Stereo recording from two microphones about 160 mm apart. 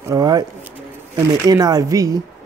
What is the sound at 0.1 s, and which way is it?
Speech, 25° right (ahead or behind).